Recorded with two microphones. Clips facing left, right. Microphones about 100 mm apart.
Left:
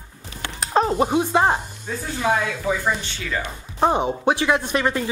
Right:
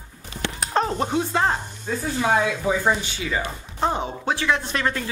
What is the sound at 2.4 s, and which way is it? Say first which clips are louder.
Speech: right 2 dB; 15° right (ahead or behind).